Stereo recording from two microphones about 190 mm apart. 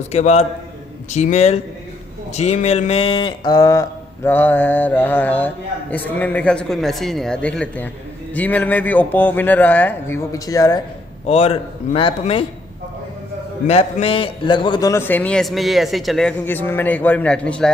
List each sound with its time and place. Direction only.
0.1 s a man's voice: 35° left (ahead or behind); by 10.8 s 20° left (ahead or behind)
11.2 s a man's voice: 30° left (ahead or behind)
13.7 s speech: 35° left (ahead or behind); by 17.6 s 5° left (ahead or behind)